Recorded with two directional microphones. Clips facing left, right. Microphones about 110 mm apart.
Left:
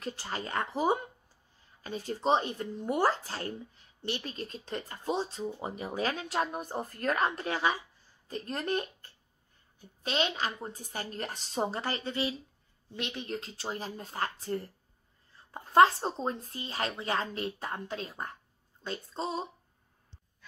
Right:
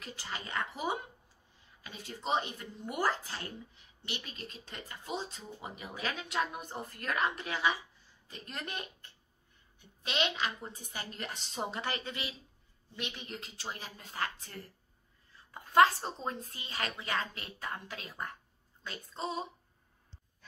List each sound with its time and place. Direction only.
0.0 s speech: 40° left (ahead or behind)